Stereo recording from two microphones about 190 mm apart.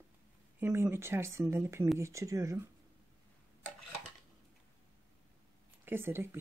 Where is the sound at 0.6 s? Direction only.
10° right (ahead or behind).